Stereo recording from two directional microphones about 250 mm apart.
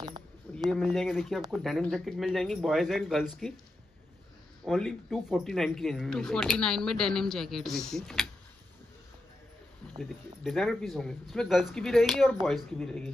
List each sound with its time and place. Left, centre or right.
0.0 s a sound: centre
0.7 s speech: centre
4.6 s speech: centre
9.9 s speech: centre